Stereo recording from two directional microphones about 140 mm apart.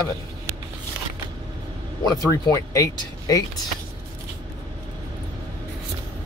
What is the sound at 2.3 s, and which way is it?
Speech, 25° left (ahead or behind).